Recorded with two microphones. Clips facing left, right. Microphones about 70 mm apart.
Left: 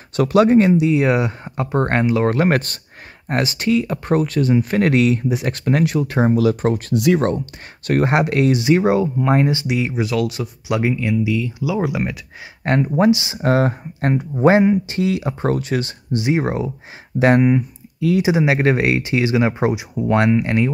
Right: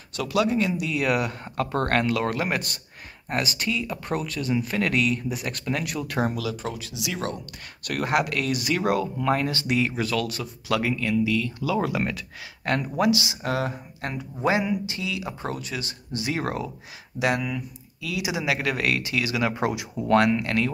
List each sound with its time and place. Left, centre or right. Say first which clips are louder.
0.1 s speech: left 10 dB; left
2.3 s speech: left 9 dB; left
6.4 s speech: left 13 dB; left; by 12.2 s centre
12.6 s speech: left 7 dB; left
16.2 s speech: left 8 dB; left
17.2 s speech: left 11 dB; left